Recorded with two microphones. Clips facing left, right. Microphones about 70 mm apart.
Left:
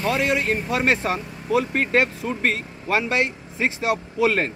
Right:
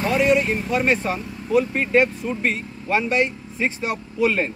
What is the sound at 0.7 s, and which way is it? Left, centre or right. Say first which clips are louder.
A man's voice: right 1 dB; left.